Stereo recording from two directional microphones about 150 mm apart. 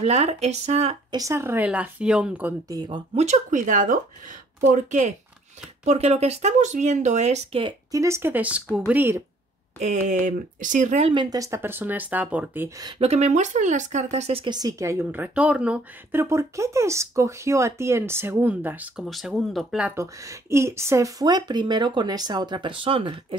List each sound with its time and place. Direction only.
0.0 s speech: 45° right (ahead or behind)
1.1 s speech: 20° right (ahead or behind)
2.7 s speech: 30° right (ahead or behind)
3.2 s speech: 55° right (ahead or behind)
5.9 s speech: 45° right (ahead or behind)
7.9 s speech: 20° right (ahead or behind)
9.8 s speech: 50° right (ahead or behind)
11.0 s speech: 40° right (ahead or behind)
11.2 s speech: 20° right (ahead or behind)
12.6 s speech: 20° right (ahead or behind)
13.0 s speech: 45° right (ahead or behind); by 19.0 s 10° right (ahead or behind)
19.0 s speech: centre (ahead or behind)
20.0 s speech: 20° right (ahead or behind); by 23.1 s 35° right (ahead or behind)